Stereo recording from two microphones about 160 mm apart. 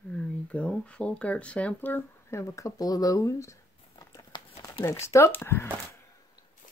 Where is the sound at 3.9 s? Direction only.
20° left (ahead or behind).